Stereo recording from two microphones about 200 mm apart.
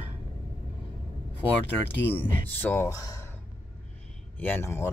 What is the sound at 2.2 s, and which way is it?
Speech, 10° left (ahead or behind).